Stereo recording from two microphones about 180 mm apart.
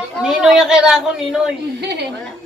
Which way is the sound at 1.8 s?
65° right (ahead or behind).